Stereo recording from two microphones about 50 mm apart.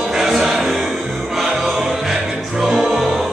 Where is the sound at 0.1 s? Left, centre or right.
Centre.